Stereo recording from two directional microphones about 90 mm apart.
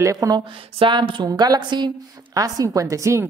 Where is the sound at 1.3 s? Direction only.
55° right (ahead or behind).